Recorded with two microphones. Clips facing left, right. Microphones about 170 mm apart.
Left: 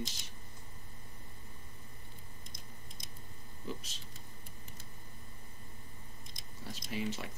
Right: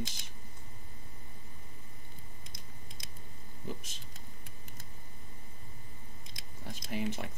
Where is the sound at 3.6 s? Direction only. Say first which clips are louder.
Even; 50° right (ahead or behind).